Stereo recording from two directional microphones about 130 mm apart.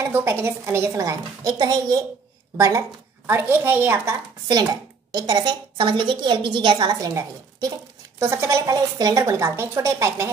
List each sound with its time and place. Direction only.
0.0 s a woman's voice: 20° right (ahead or behind)
5.1 s a woman's voice: 30° right (ahead or behind)